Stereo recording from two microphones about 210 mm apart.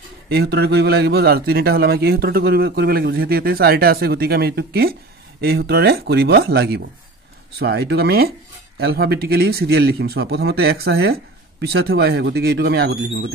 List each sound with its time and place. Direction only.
0.3 s a man's voice: 50° right (ahead or behind)